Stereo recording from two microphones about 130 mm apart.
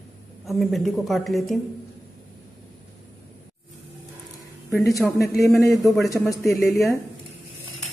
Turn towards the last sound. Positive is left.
turn(degrees=20)  # may be behind; listen again after turning